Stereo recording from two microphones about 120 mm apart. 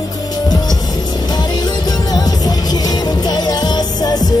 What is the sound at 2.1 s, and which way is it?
Music, 35° left (ahead or behind).